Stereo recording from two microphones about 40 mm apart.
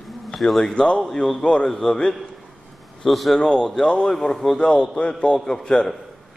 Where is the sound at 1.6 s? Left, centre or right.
Centre.